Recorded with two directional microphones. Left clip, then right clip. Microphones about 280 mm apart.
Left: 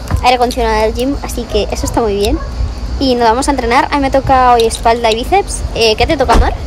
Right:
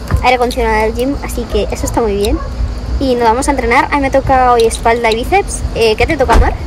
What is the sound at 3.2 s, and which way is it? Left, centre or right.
A woman's voice, centre.